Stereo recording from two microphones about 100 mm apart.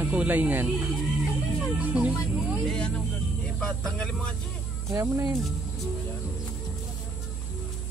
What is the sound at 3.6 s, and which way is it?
Speech, 5° left (ahead or behind).